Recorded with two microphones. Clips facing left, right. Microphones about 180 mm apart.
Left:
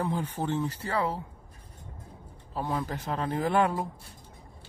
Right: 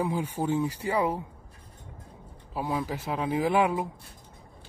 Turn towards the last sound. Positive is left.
turn(degrees=-5)  # may be behind; listen again after turning